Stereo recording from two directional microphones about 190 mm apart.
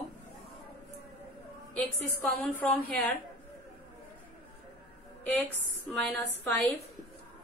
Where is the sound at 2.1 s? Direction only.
10° left (ahead or behind).